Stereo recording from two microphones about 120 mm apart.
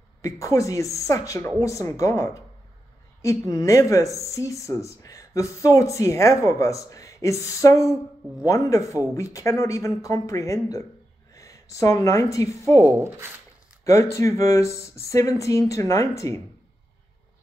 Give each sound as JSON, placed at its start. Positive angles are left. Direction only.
{"t": 0.2, "sound": "speech", "side_deg": 25}
{"t": 12.8, "sound": "speech", "side_deg": -25}
{"t": 13.8, "sound": "speech", "side_deg": 25}